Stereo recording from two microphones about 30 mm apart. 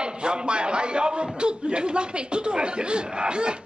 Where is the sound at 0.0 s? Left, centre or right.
Right.